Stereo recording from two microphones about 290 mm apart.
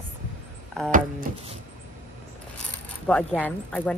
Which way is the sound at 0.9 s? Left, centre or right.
Right.